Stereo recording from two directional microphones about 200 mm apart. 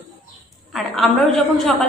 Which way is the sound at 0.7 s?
Centre (ahead or behind).